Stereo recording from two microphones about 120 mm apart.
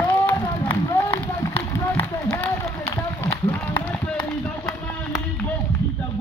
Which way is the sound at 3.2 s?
15° left (ahead or behind).